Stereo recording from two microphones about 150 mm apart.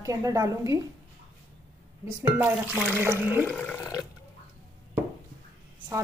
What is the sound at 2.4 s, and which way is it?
Speech, 10° right (ahead or behind).